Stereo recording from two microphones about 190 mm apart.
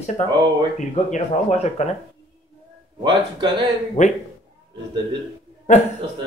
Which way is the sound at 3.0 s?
25° right (ahead or behind).